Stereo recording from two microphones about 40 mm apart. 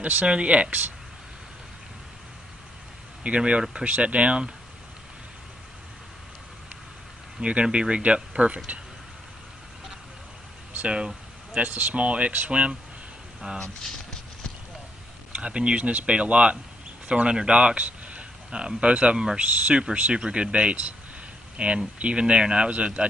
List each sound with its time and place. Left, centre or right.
0.0 s speech: right
3.3 s speech: right
7.6 s speech: right
11.5 s speech: right
13.4 s speech: centre
15.3 s speech: right